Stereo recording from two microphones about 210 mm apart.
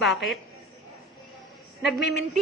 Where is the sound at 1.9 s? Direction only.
Centre (ahead or behind).